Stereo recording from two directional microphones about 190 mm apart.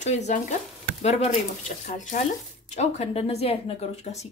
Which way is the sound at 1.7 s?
40° left (ahead or behind).